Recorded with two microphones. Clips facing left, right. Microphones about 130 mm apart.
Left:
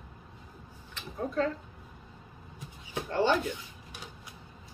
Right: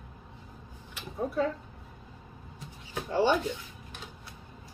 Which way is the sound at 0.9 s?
10° right (ahead or behind).